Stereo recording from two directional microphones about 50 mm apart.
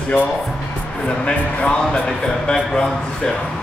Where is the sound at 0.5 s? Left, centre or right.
Centre.